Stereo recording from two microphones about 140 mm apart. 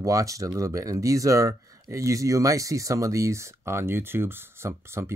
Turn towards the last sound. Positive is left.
turn(degrees=-20)  # may be behind; listen again after turning